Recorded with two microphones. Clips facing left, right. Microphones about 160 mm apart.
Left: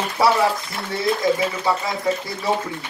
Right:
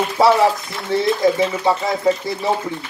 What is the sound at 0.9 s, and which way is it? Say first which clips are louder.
A man's voice: right 4 dB; 25° right (ahead or behind).